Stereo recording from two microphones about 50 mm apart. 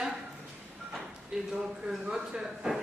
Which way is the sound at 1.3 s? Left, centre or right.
Centre.